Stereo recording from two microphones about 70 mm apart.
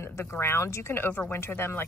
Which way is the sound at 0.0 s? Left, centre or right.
Left.